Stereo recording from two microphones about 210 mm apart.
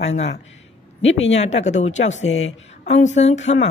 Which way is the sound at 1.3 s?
30° left (ahead or behind).